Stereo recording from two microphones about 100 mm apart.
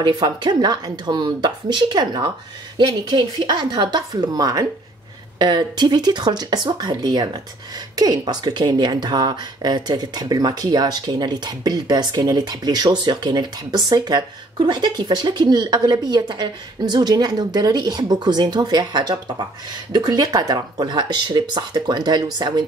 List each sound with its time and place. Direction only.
0.0 s speech: 45° right (ahead or behind)